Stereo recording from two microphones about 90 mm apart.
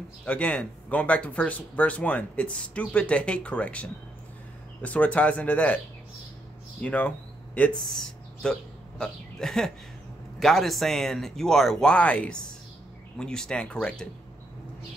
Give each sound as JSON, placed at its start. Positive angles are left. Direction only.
{"t": 0.2, "sound": "speech", "side_deg": 15}
{"t": 6.8, "sound": "speech", "side_deg": 15}
{"t": 7.8, "sound": "speech", "side_deg": 5}